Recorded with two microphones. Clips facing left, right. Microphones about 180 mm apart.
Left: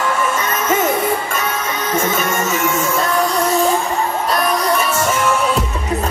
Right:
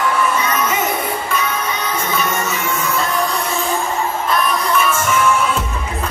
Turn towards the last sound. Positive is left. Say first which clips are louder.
# even
turn(degrees=40)  # may be behind; listen again after turning